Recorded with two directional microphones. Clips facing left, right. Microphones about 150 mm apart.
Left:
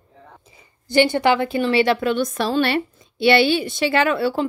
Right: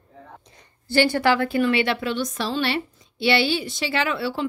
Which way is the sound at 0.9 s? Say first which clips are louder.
Left 3 dB; 20° left (ahead or behind).